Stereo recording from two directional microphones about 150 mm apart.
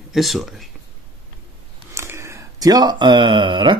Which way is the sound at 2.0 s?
20° right (ahead or behind).